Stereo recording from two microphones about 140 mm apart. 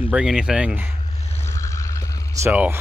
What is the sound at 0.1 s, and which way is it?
Speech, 5° right (ahead or behind).